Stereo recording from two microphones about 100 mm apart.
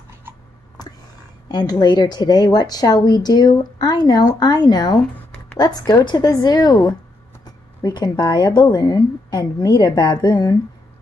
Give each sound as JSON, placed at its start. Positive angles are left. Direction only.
{"t": 1.5, "sound": "a woman's voice", "side_deg": 45}